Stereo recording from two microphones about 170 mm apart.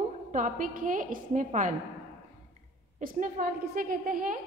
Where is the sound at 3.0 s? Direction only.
55° right (ahead or behind).